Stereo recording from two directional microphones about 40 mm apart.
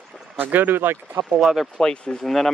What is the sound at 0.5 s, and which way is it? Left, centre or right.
Speech, right.